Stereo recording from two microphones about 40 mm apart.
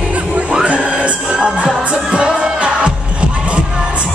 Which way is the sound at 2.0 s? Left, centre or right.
Centre.